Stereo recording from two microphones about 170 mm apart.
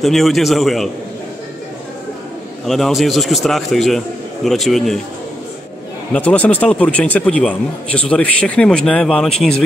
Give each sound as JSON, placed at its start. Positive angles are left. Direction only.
{"t": 0.0, "sound": "a man's voice", "side_deg": 0}
{"t": 2.6, "sound": "a man's voice", "side_deg": 0}
{"t": 6.1, "sound": "speech", "side_deg": 10}